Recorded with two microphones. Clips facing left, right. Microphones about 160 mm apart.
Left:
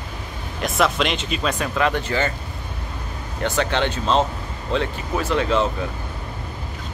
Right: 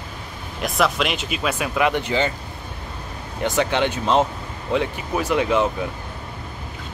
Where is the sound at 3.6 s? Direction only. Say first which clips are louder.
Right 2 dB; 15° right (ahead or behind).